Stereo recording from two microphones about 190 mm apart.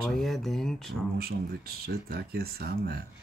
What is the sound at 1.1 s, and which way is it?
Speech, 55° right (ahead or behind).